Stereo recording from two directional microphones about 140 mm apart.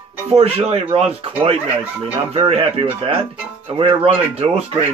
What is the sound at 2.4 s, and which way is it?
Speech, 40° right (ahead or behind).